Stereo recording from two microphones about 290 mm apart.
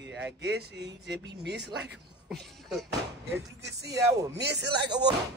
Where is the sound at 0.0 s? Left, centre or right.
Right.